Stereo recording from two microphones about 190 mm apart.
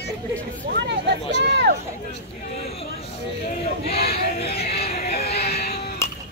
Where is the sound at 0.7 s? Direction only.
65° right (ahead or behind).